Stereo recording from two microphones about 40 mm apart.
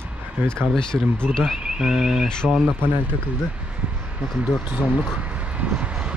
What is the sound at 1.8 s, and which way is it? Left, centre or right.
Speech, centre.